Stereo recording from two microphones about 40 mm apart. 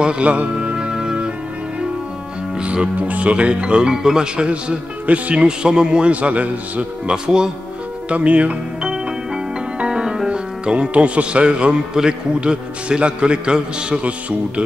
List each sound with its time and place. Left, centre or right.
0.0 s music: right
2.6 s music: right
3.0 s speech: right
3.9 s a man's voice: centre; by 6.9 s right
7.1 s speech: centre
8.1 s speech: right
8.8 s music: centre
9.8 s speech: centre